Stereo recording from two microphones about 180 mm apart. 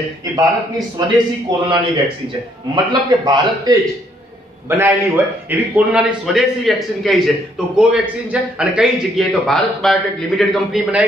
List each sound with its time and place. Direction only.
0.4 s a man's voice: 20° right (ahead or behind)
2.7 s a man's voice: 25° right (ahead or behind); by 11.1 s 5° right (ahead or behind)